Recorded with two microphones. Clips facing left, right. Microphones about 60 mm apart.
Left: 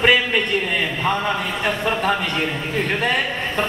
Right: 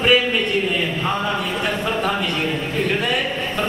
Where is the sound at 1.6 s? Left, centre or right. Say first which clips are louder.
Left 3 dB; left.